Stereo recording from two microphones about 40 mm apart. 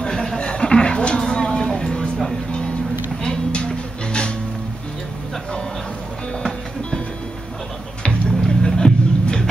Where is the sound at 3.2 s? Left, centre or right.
Left.